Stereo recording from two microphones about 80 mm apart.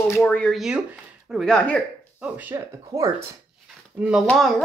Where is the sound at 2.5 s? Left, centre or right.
Right.